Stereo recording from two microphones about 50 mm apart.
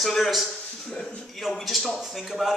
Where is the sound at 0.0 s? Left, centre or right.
Centre.